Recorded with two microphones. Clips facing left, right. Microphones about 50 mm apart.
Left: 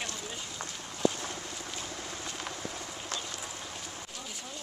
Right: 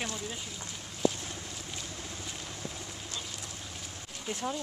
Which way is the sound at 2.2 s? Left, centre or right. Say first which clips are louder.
Left 3 dB; left.